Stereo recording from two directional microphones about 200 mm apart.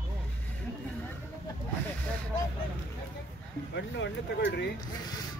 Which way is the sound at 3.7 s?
60° left (ahead or behind).